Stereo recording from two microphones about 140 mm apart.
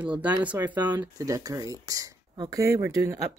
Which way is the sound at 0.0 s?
10° right (ahead or behind).